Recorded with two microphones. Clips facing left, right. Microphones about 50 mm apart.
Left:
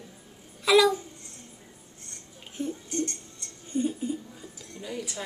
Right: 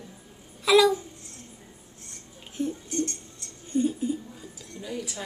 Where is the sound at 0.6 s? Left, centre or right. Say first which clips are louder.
Right 1 dB; centre.